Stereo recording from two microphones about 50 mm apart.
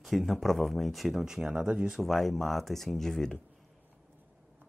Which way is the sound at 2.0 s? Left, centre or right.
Centre.